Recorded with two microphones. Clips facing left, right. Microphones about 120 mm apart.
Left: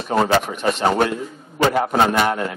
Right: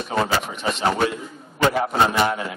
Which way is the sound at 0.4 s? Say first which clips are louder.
Left 4 dB; 50° left (ahead or behind).